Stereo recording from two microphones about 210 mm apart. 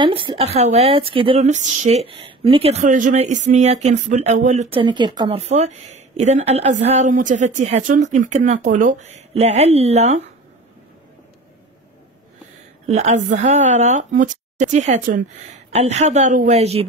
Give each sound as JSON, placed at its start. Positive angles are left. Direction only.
{"t": 0.0, "sound": "a woman's voice", "side_deg": -25}
{"t": 12.8, "sound": "a woman's voice", "side_deg": -35}